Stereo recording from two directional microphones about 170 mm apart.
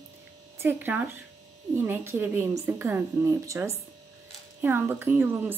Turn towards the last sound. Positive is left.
turn(degrees=-10)  # may be behind; listen again after turning